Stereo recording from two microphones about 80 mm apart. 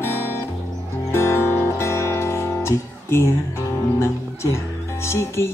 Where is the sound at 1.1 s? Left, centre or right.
Left.